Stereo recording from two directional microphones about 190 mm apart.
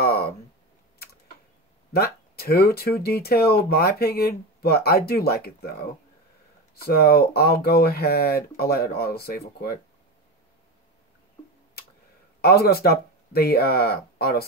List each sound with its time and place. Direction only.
0.0 s a sound: 55° left (ahead or behind)
1.9 s speech: 55° left (ahead or behind)
12.4 s speech: 55° left (ahead or behind)